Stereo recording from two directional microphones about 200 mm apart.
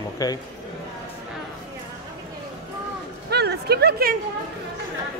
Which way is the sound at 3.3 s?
55° right (ahead or behind).